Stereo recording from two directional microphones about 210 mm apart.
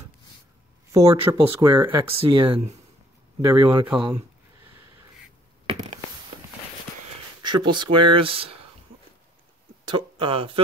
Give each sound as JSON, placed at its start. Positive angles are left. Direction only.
{"t": 0.9, "sound": "speech", "side_deg": -15}
{"t": 3.3, "sound": "speech", "side_deg": -15}
{"t": 5.7, "sound": "a sound", "side_deg": -30}
{"t": 7.4, "sound": "speech", "side_deg": -20}
{"t": 9.8, "sound": "speech", "side_deg": -25}